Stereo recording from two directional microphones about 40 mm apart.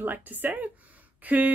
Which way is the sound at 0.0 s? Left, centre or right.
Right.